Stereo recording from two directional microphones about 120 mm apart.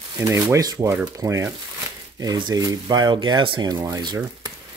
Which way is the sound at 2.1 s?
35° right (ahead or behind).